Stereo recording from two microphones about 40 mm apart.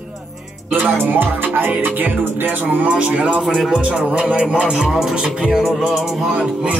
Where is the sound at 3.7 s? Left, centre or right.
Right.